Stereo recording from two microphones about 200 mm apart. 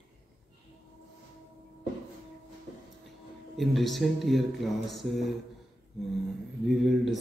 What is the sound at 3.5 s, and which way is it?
Speech, centre (ahead or behind).